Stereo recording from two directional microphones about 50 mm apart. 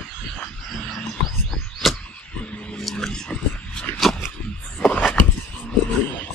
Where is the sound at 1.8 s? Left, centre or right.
Centre.